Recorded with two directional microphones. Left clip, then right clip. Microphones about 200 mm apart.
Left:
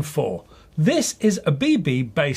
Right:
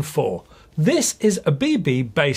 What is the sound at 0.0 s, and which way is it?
Speech, 30° right (ahead or behind).